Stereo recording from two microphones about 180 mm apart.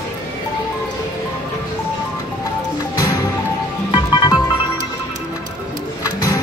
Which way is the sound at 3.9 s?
25° left (ahead or behind).